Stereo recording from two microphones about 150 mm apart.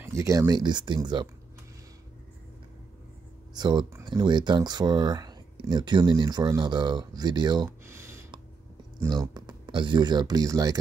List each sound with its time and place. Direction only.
0.0 s speech: 20° right (ahead or behind)
3.5 s speech: 25° right (ahead or behind)
7.8 s a sound: 20° right (ahead or behind)
9.2 s speech: 25° right (ahead or behind)